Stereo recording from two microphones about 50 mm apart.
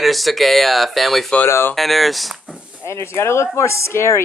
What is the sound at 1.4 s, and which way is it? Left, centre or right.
Speech, left.